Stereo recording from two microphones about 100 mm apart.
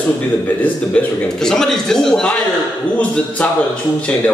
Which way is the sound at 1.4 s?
5° left (ahead or behind).